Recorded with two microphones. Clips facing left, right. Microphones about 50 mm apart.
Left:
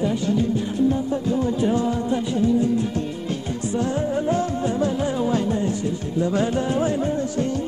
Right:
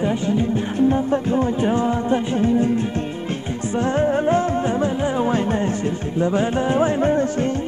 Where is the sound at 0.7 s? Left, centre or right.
Right.